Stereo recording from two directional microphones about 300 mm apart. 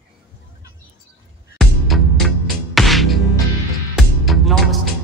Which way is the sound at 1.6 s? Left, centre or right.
Centre.